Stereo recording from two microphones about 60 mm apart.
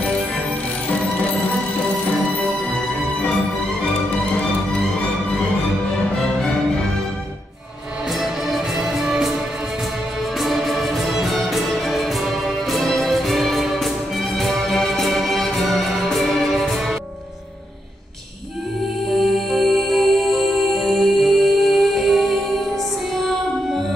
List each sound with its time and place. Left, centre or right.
8.2 s music: centre
10.4 s music: centre
19.1 s music: centre